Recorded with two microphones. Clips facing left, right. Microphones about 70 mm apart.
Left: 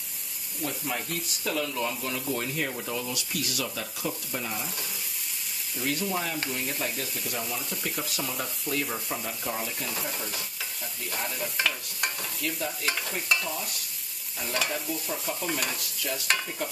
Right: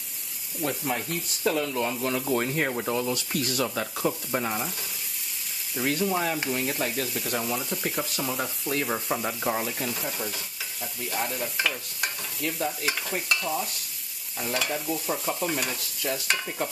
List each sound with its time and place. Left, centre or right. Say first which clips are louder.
0.6 s speech: right 4 dB; right
1.4 s speech: right 4 dB; right
5.8 s speech: right 4 dB; right
8.2 s stir: right 4 dB; centre
8.6 s speech: right 4 dB; right
9.2 s speech: right 6 dB; right
9.8 s stir: right 2 dB; centre
12.6 s stir: right 2 dB; centre